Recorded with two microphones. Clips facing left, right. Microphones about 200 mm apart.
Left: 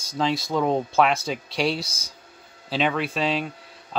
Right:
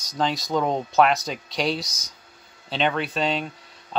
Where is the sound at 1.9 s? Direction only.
30° left (ahead or behind).